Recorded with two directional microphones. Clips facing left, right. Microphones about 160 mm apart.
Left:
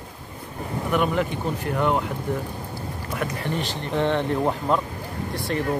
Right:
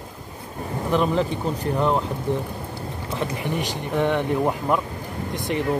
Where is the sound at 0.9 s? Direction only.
30° right (ahead or behind).